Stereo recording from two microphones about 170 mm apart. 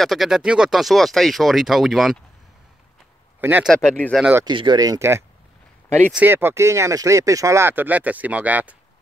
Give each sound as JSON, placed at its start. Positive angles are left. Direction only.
{"t": 0.0, "sound": "speech", "side_deg": 0}
{"t": 3.3, "sound": "a man's voice", "side_deg": -10}
{"t": 3.7, "sound": "speech", "side_deg": 5}
{"t": 4.2, "sound": "speech", "side_deg": -15}
{"t": 4.5, "sound": "speech", "side_deg": -25}